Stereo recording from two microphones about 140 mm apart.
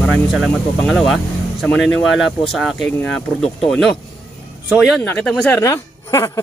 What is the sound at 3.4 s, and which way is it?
Speech, 5° left (ahead or behind).